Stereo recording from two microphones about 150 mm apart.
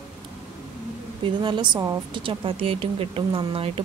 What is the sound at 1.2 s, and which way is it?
Speech, 30° right (ahead or behind).